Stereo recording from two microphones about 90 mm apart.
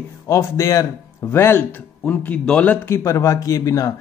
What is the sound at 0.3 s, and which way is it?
A man's voice, 35° left (ahead or behind).